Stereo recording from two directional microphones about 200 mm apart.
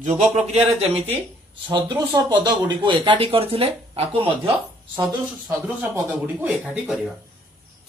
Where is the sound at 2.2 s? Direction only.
20° right (ahead or behind).